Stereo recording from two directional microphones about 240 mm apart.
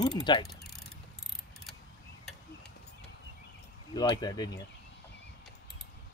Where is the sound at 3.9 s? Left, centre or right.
Centre.